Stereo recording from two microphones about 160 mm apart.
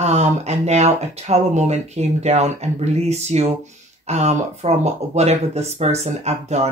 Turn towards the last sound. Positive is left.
turn(degrees=-45)  # may be behind; listen again after turning